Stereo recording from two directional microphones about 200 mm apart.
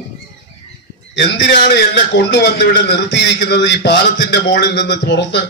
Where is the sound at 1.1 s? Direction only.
60° left (ahead or behind).